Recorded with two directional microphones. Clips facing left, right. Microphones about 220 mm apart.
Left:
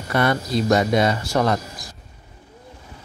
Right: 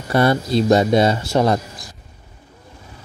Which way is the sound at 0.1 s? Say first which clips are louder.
Right 4 dB; 30° right (ahead or behind).